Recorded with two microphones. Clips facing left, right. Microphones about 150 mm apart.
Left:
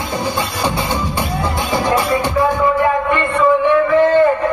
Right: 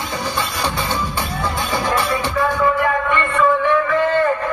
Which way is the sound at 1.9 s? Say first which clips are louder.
Left 5 dB; 15° left (ahead or behind).